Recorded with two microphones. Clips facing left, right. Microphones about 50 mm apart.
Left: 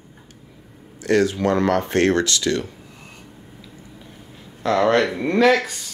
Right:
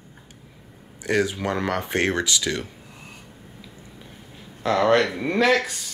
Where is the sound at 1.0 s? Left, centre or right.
Centre.